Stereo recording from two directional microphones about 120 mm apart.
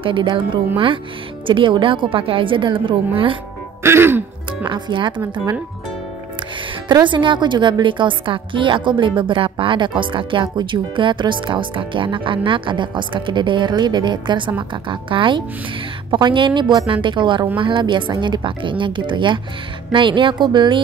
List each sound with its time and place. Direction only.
0.0 s a woman's voice: 45° right (ahead or behind)
3.8 s throat clearing: 20° right (ahead or behind)
4.6 s a woman's voice: 40° right (ahead or behind)
7.1 s a woman's voice: 40° right (ahead or behind)